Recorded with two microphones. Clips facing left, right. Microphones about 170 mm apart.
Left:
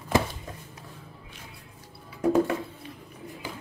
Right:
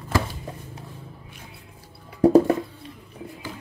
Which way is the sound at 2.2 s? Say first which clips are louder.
Right 7 dB; 35° right (ahead or behind).